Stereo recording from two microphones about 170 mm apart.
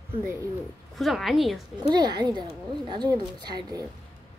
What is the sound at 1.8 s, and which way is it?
A woman's voice, 25° right (ahead or behind).